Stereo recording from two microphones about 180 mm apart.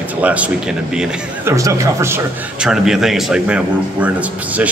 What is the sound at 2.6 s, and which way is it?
A man's voice, centre (ahead or behind).